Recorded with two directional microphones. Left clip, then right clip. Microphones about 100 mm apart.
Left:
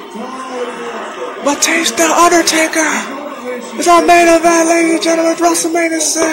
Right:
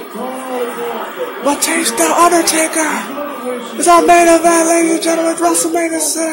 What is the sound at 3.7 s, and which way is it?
Music, 5° left (ahead or behind).